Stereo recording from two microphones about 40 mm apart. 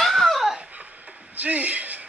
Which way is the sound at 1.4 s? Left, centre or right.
Right.